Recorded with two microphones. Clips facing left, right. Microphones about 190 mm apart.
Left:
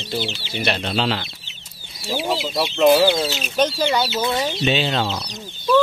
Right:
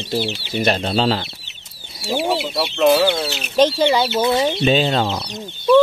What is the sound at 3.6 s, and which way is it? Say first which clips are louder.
Speech: right 5 dB; 25° right (ahead or behind).